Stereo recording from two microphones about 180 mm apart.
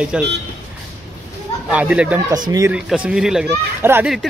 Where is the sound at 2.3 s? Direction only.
20° right (ahead or behind).